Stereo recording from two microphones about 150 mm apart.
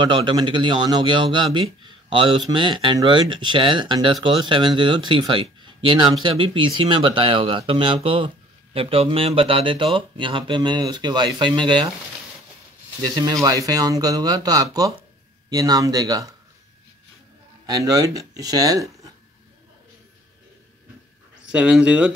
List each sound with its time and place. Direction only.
0.0 s a man's voice: 30° right (ahead or behind)
13.0 s speech: 25° right (ahead or behind)
17.6 s speech: 25° right (ahead or behind)
21.4 s speech: 5° right (ahead or behind)